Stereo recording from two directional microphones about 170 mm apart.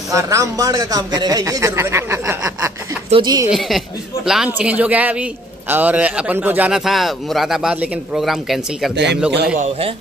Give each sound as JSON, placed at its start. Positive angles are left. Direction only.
{"t": 0.1, "sound": "speech", "side_deg": -20}
{"t": 3.1, "sound": "speech", "side_deg": -25}
{"t": 3.4, "sound": "speech", "side_deg": 0}
{"t": 8.9, "sound": "speech", "side_deg": -90}
{"t": 9.6, "sound": "a man's voice", "side_deg": -35}